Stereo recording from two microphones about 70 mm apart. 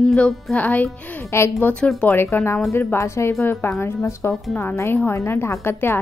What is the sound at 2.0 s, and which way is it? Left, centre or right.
Speech, left.